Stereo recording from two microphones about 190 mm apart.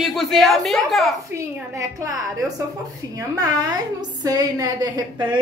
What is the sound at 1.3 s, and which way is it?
Speech, 15° right (ahead or behind).